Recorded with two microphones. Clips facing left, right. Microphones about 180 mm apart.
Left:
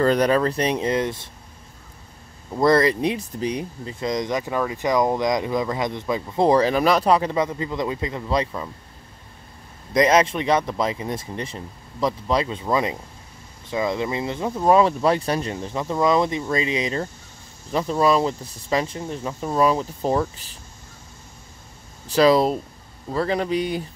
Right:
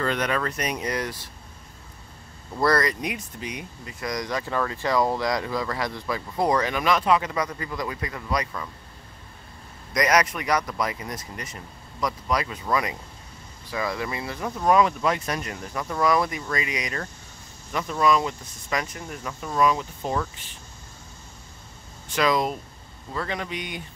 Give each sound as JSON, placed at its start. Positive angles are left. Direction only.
{"t": 0.0, "sound": "speech", "side_deg": 35}
{"t": 2.5, "sound": "speech", "side_deg": 25}
{"t": 9.9, "sound": "speech", "side_deg": 25}
{"t": 22.0, "sound": "speech", "side_deg": 35}